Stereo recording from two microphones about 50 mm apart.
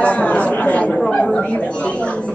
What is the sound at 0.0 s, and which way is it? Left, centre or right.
Chatter, left.